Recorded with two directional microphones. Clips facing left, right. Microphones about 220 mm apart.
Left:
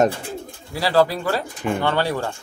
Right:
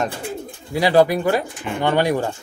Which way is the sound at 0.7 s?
20° right (ahead or behind).